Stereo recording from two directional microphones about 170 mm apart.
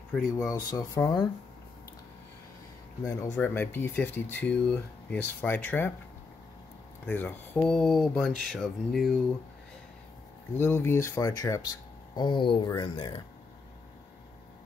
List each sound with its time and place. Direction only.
0.1 s speech: 5° right (ahead or behind)
0.7 s speech: 20° left (ahead or behind)
3.3 s speech: 10° left (ahead or behind)
7.1 s speech: 10° left (ahead or behind)
10.6 s speech: 15° left (ahead or behind)